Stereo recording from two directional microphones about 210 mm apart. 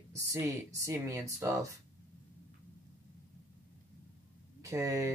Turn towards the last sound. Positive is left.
turn(degrees=-15)  # may be behind; listen again after turning